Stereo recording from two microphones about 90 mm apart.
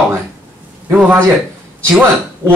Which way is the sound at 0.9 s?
20° right (ahead or behind).